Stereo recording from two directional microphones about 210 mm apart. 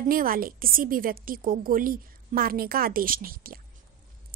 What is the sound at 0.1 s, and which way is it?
A woman's voice, 45° right (ahead or behind).